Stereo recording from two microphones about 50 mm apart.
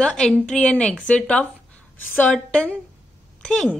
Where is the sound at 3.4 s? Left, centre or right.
Centre.